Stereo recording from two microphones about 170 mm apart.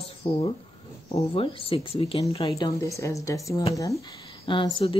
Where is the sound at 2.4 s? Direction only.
20° left (ahead or behind).